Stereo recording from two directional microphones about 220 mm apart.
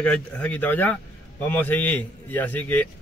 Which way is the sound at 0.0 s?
5° left (ahead or behind).